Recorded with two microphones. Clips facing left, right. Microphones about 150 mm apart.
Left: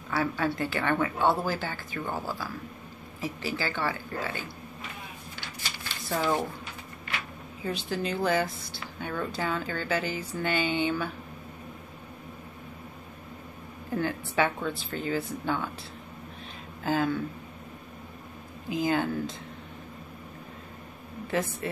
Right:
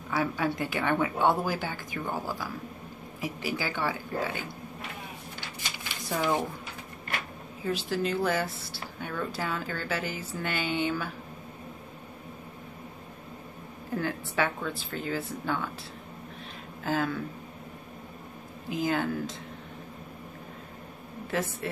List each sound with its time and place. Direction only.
0.1 s speech: 15° right (ahead or behind)
5.6 s a sound: 15° right (ahead or behind)
7.6 s a woman's voice: 5° right (ahead or behind)
13.9 s a woman's voice: centre (ahead or behind)
16.8 s a woman's voice: centre (ahead or behind)
18.7 s a woman's voice: centre (ahead or behind)